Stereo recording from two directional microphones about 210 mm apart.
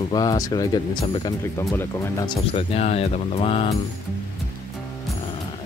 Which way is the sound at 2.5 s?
30° left (ahead or behind).